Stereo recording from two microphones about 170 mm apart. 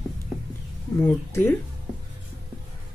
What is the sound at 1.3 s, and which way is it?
Speech, 15° left (ahead or behind).